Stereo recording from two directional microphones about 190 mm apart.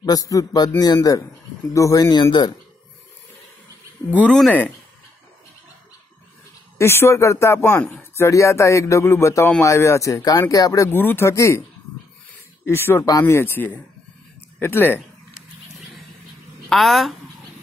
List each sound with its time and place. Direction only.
0.0 s a man's voice: 20° left (ahead or behind)
4.2 s speech: 5° left (ahead or behind)
6.8 s speech: 15° left (ahead or behind)
12.6 s speech: 10° left (ahead or behind)
15.3 s a sound: centre (ahead or behind)
16.6 s speech: centre (ahead or behind)